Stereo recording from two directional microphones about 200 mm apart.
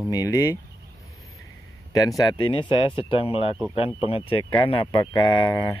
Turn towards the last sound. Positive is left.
turn(degrees=20)  # may be behind; listen again after turning